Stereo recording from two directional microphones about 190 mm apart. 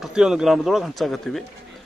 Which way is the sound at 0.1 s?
5° right (ahead or behind).